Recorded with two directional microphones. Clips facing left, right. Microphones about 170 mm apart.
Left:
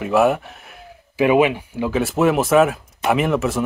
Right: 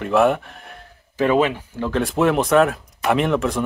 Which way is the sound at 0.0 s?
5° left (ahead or behind).